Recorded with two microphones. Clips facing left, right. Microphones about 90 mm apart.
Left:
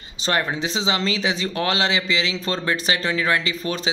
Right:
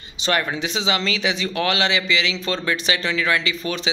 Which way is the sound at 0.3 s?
30° left (ahead or behind).